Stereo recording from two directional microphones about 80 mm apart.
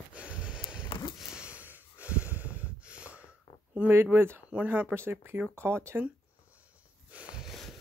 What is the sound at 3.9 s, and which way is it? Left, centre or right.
Speech, right.